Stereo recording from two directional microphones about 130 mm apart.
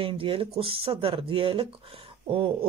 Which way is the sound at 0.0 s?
45° right (ahead or behind).